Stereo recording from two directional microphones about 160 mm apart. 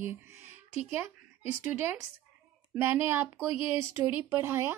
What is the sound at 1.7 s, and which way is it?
A woman's voice, 15° right (ahead or behind).